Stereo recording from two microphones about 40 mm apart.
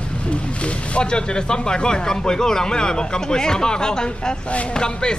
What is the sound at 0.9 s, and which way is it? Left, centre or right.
Speech, left.